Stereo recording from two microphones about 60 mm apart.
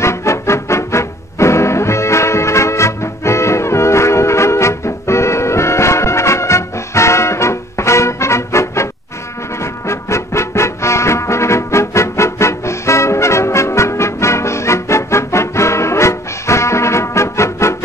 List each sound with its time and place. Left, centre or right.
0.0 s music: left